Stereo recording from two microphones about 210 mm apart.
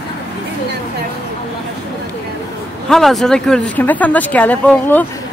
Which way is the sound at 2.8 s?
Centre (ahead or behind).